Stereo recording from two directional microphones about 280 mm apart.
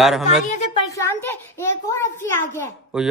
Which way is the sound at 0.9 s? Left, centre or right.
Centre.